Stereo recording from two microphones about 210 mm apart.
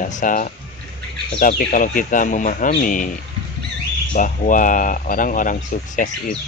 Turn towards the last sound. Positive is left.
turn(degrees=40)  # may be behind; listen again after turning